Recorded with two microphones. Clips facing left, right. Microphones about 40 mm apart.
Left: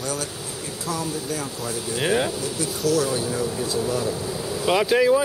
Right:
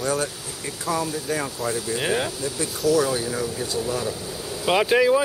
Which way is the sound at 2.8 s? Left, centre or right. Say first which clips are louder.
Right 2 dB; centre.